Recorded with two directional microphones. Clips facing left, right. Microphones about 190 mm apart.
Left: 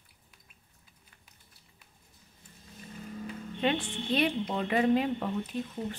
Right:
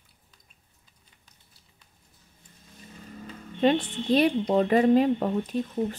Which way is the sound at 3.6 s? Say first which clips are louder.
Right 7 dB; 40° right (ahead or behind).